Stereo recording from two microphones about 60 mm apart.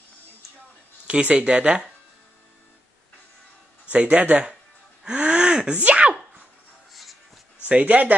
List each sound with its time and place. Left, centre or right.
1.0 s speech: centre
3.9 s speech: centre
5.0 s gasp: centre
5.8 s speech: right
6.9 s a sound: centre
7.6 s speech: right